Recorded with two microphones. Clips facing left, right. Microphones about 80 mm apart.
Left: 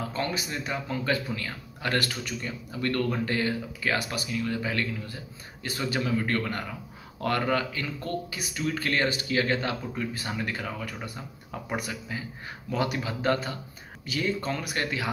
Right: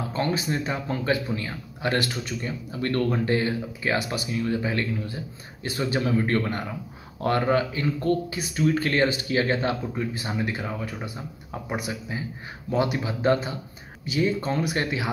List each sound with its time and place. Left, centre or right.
0.1 s a man's voice: right